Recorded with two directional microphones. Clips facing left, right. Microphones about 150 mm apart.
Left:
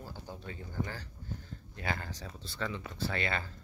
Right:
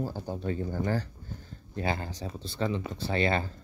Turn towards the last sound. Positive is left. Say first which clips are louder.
# right 7 dB
turn(degrees=-30)  # may be behind; listen again after turning